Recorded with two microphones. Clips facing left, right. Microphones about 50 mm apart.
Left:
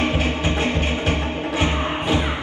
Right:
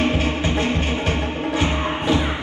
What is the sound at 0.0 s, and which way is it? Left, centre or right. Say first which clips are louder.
Music: right 1 dB; left.